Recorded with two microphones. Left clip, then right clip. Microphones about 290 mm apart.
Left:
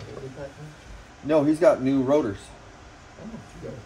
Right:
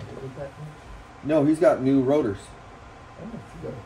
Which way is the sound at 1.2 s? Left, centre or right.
Centre.